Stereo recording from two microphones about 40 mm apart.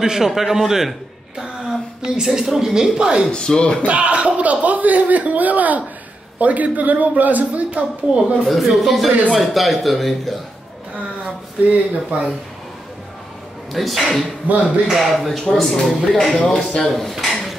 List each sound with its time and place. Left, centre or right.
0.0 s a man's voice: centre
3.3 s speech: left
3.8 s a man's voice: right
8.5 s speech: centre
11.7 s speech: right
13.7 s speech: centre
14.4 s a man's voice: right
14.9 s speech: centre
17.2 s a sound: centre